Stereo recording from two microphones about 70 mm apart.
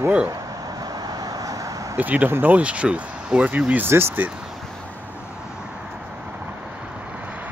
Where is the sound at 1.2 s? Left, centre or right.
Right.